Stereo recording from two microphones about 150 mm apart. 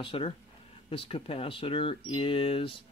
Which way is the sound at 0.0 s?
35° left (ahead or behind).